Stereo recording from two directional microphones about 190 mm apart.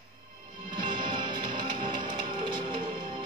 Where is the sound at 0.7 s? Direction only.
25° right (ahead or behind).